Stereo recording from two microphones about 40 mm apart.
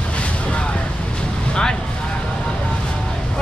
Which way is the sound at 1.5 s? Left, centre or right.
Centre.